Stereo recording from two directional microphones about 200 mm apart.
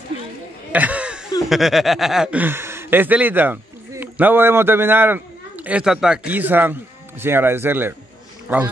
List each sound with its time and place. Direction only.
0.7 s snicker: 5° right (ahead or behind)
8.5 s a man's voice: 10° right (ahead or behind)